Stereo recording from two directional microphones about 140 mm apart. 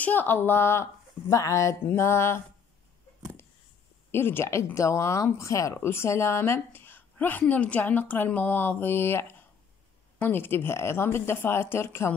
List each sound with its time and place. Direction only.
0.0 s speech: 15° left (ahead or behind)
1.3 s a sound: 20° left (ahead or behind)
4.1 s speech: 15° left (ahead or behind)